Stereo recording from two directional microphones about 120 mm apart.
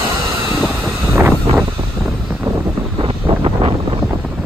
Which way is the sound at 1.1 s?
20° right (ahead or behind).